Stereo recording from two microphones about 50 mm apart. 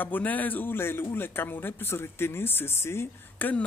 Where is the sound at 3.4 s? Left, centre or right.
Left.